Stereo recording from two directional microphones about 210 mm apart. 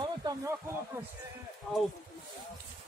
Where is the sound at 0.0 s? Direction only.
20° right (ahead or behind).